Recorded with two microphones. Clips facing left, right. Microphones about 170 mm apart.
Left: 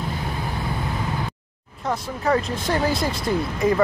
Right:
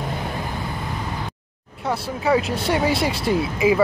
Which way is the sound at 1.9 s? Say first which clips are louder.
Right 2 dB; 5° right (ahead or behind).